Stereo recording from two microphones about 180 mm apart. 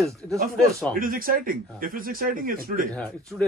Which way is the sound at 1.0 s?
50° right (ahead or behind).